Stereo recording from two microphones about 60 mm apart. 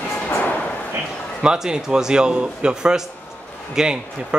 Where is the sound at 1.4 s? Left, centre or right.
Centre.